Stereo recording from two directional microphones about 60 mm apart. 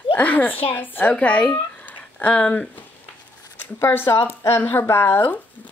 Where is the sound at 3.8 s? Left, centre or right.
Left.